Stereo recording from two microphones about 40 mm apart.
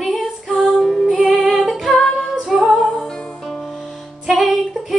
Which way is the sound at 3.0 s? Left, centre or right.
Centre.